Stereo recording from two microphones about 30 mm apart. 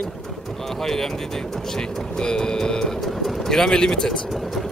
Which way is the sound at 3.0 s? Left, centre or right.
Centre.